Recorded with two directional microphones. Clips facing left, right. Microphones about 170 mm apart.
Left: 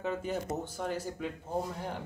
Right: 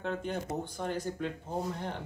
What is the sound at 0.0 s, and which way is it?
Speech, 5° left (ahead or behind).